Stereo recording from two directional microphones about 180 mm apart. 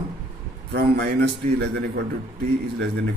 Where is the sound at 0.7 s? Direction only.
65° right (ahead or behind).